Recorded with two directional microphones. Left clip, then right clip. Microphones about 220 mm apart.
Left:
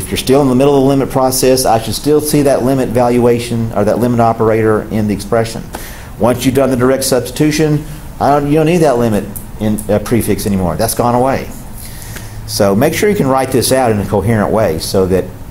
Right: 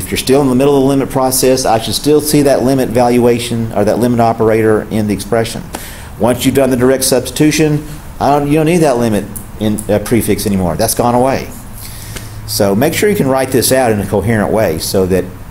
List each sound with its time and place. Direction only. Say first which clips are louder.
0.1 s a man's voice: even; 5° left (ahead or behind)
12.4 s a man's voice: left 1 dB; centre (ahead or behind)